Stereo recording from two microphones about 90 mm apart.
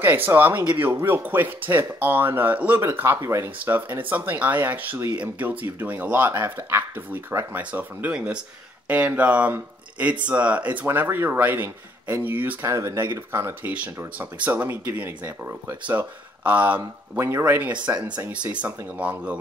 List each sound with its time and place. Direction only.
0.0 s speech: 20° right (ahead or behind)
3.5 s speech: 20° right (ahead or behind)
12.7 s speech: 35° right (ahead or behind)
14.1 s speech: 15° right (ahead or behind)
17.2 s speech: 30° right (ahead or behind); by 19.4 s 15° right (ahead or behind)